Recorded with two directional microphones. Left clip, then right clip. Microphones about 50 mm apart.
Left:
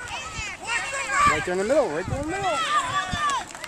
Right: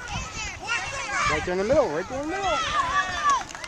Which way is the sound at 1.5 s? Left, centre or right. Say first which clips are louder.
Even; left.